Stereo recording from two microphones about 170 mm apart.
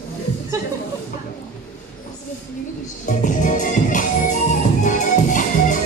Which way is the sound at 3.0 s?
50° left (ahead or behind).